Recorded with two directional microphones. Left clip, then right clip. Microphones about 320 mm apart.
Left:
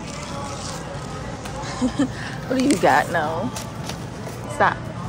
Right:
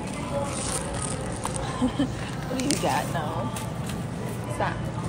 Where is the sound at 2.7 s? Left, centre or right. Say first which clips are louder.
Left 9 dB; centre.